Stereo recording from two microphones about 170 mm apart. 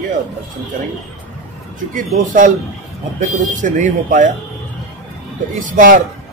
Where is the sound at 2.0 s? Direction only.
50° right (ahead or behind).